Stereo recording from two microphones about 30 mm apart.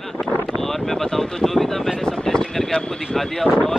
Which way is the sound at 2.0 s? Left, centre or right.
Left.